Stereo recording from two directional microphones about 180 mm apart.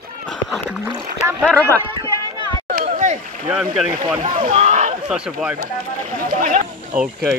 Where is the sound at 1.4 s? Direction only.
5° left (ahead or behind).